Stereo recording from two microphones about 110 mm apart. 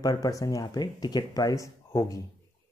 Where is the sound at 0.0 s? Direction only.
35° left (ahead or behind).